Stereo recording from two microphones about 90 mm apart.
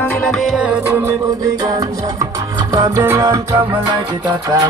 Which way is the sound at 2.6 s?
55° right (ahead or behind).